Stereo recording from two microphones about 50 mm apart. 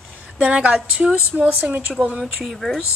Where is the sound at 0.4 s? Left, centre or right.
Right; by 2.8 s centre.